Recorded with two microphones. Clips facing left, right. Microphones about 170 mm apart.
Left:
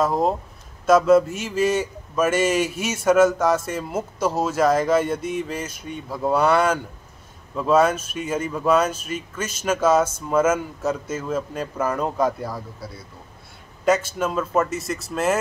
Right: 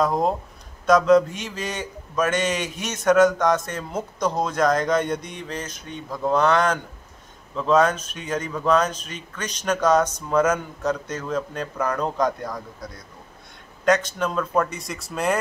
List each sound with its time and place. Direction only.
0.0 s a man's voice: centre (ahead or behind)